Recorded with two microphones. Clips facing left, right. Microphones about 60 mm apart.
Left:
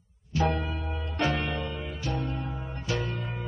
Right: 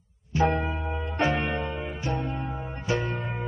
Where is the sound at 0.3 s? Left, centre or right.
Right.